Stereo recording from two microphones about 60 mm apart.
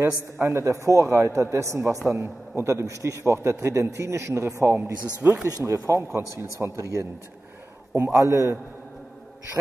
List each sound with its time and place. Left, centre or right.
0.0 s a man's voice: right
5.2 s speech: right
5.7 s speech: right
5.9 s a man's voice: right
8.1 s a man's voice: right